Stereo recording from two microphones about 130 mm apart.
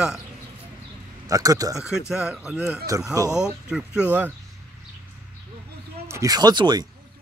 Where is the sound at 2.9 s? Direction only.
25° right (ahead or behind).